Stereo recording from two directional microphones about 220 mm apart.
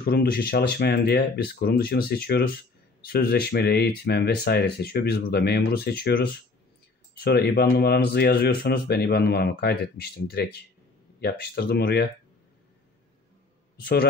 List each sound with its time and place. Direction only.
0.0 s speech: 45° left (ahead or behind)
7.2 s speech: 45° left (ahead or behind)